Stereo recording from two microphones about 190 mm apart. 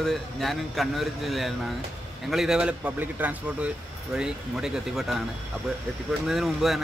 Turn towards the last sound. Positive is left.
turn(degrees=0)  # may be behind; listen again after turning